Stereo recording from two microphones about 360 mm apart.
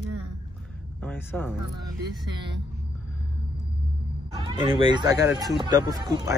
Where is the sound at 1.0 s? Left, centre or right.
Centre.